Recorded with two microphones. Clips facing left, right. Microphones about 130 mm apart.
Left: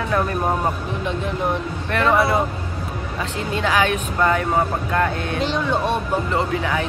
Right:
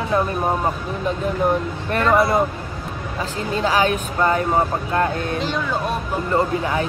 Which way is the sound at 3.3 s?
35° right (ahead or behind).